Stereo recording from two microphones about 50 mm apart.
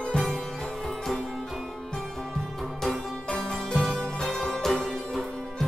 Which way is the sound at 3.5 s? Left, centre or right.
Centre.